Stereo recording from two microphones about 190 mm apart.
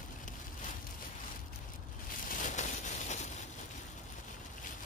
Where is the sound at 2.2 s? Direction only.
40° left (ahead or behind).